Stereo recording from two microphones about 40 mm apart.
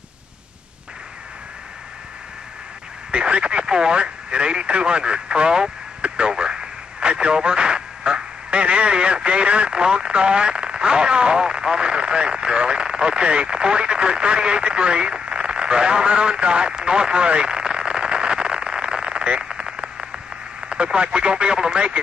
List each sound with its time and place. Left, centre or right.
3.1 s speech: right